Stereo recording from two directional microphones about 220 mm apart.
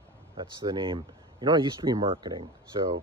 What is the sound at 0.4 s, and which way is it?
Speech, 20° right (ahead or behind).